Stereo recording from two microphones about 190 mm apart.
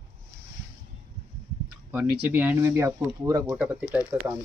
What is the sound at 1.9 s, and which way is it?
Speech, 10° right (ahead or behind).